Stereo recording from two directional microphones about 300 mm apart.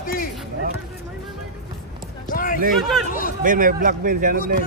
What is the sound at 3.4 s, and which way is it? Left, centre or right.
Speech, right.